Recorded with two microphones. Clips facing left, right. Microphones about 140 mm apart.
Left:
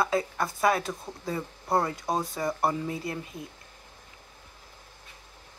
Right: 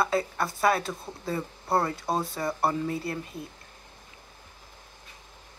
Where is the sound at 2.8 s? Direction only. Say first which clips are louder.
Right 2 dB; 20° left (ahead or behind).